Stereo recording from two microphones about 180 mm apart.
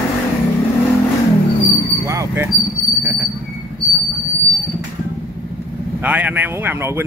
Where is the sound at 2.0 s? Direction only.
15° right (ahead or behind).